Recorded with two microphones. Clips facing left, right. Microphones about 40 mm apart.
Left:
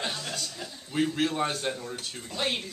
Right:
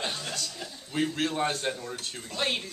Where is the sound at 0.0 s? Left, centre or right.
Centre.